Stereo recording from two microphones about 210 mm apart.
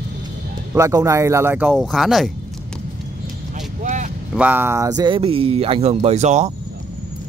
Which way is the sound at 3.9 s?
35° right (ahead or behind).